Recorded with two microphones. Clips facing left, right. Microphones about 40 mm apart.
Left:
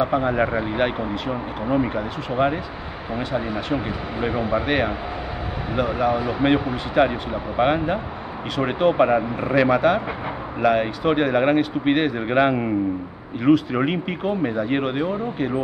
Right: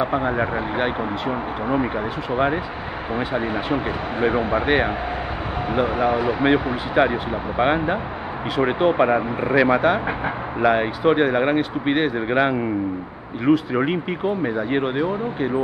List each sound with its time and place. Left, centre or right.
0.7 s speech: centre
1.7 s speech: centre
3.3 s speech: right
4.6 s speech: centre